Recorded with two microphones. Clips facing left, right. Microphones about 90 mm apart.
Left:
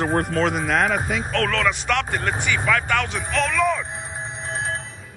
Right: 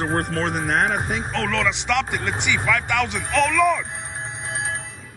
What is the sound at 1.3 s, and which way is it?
Speech, 20° right (ahead or behind).